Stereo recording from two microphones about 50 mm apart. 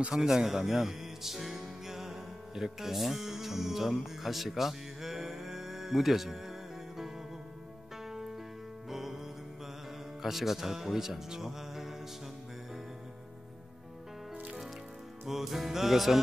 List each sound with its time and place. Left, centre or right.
0.1 s speech: centre
8.8 s music: centre
10.2 s speech: centre
15.2 s music: centre